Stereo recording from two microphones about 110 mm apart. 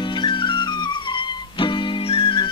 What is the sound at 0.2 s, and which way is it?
Music, 45° left (ahead or behind).